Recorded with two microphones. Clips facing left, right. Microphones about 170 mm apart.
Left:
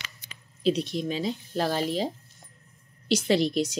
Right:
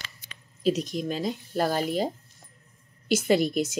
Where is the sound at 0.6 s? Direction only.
45° right (ahead or behind).